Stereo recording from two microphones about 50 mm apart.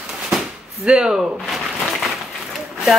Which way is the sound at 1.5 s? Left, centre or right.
Centre.